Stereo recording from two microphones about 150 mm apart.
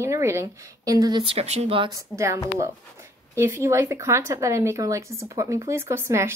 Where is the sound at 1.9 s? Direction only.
20° right (ahead or behind).